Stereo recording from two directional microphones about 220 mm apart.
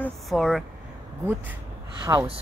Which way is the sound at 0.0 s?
Centre (ahead or behind).